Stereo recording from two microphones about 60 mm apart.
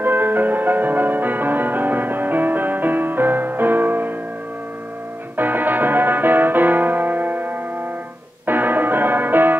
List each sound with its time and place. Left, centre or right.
0.0 s music: right
5.4 s music: right